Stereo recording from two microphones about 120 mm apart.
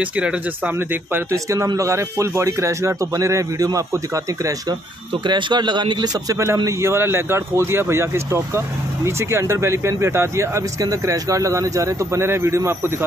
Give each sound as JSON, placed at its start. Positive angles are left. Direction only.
{"t": 0.0, "sound": "speech", "side_deg": -10}
{"t": 5.2, "sound": "speech", "side_deg": -40}